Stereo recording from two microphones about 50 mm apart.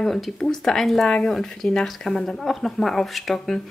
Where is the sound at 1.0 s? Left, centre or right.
Centre.